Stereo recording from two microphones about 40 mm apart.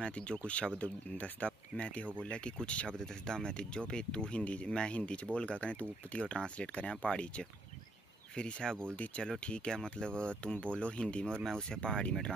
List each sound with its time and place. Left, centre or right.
0.0 s speech: left
3.0 s speech: centre
8.9 s speech: left